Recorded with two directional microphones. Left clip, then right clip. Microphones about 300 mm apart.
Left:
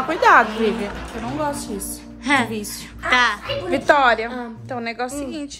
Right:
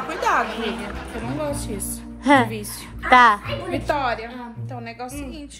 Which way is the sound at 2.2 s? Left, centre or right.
Centre.